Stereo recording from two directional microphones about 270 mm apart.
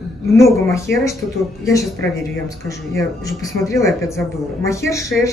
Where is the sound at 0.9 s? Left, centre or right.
Left.